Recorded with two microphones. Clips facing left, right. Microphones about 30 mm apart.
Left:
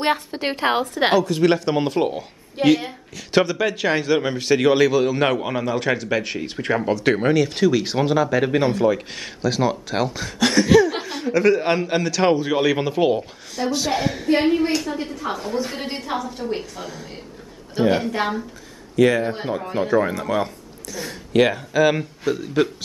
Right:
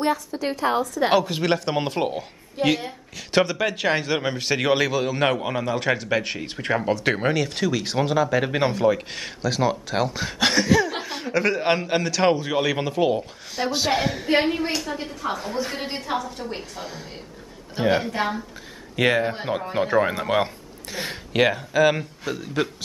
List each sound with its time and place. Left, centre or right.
0.0 s a woman's voice: left
1.1 s speech: centre
1.4 s a man's voice: centre
2.6 s a woman's voice: centre
3.2 s a man's voice: centre
10.2 s speech: centre
10.7 s a man's voice: centre
13.6 s speech: centre
14.4 s a man's voice: centre
16.7 s speech: centre
18.1 s a man's voice: centre
18.9 s speech: right
19.7 s speech: centre
21.3 s a man's voice: centre